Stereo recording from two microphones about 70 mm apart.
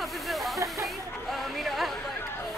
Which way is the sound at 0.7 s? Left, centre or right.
Centre.